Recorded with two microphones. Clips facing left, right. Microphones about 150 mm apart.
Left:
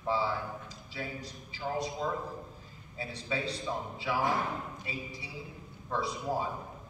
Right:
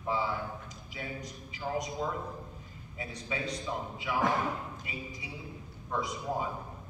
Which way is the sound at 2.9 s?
30° left (ahead or behind).